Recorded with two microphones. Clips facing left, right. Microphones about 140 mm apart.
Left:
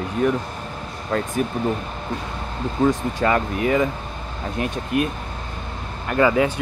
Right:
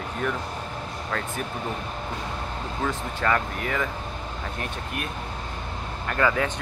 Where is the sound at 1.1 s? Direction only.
20° left (ahead or behind).